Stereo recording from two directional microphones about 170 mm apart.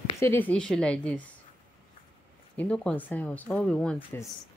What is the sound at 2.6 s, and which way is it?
Speech, 10° left (ahead or behind).